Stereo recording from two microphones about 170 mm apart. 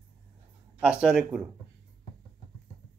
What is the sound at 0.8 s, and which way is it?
Speech, 5° right (ahead or behind).